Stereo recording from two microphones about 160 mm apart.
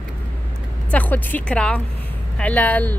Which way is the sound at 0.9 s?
10° left (ahead or behind).